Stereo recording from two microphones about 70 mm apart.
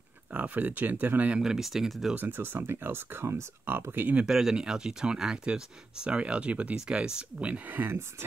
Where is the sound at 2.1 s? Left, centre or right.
Right.